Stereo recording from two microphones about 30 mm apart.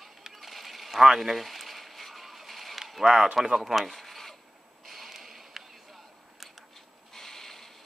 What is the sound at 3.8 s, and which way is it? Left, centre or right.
Mechanisms, centre.